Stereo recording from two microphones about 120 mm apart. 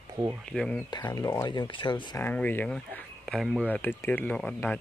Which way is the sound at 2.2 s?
15° left (ahead or behind).